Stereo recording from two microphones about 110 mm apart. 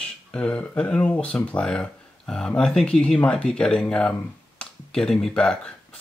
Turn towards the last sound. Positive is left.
turn(degrees=10)  # may be behind; listen again after turning